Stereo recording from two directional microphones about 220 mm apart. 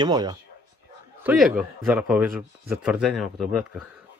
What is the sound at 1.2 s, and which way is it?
Speech, 5° right (ahead or behind).